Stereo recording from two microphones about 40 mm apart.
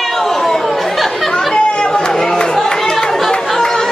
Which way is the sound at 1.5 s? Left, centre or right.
Centre.